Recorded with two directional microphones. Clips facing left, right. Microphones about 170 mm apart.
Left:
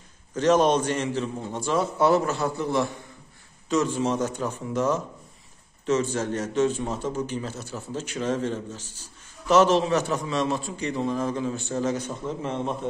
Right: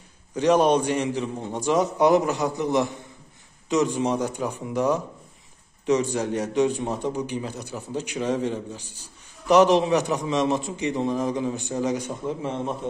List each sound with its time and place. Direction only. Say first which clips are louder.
0.3 s a man's voice: right 1 dB; 15° right (ahead or behind)